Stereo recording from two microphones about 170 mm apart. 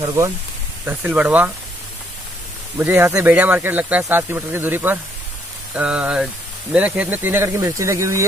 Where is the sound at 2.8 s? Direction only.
10° right (ahead or behind).